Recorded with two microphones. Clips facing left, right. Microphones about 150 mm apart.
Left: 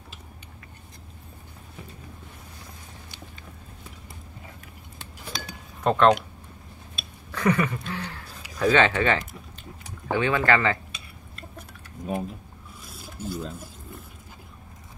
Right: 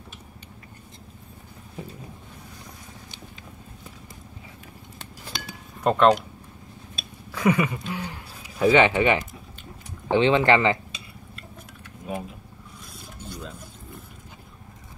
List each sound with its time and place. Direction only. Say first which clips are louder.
5.3 s chink: left 1 dB; 5° right (ahead or behind)
7.3 s a sound: right 1 dB; 10° right (ahead or behind)
8.5 s speech: right 3 dB; 15° right (ahead or behind)
12.9 s filing: left 7 dB; 5° left (ahead or behind)